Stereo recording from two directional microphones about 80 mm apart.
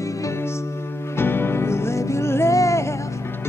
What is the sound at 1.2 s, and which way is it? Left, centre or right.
Music, left.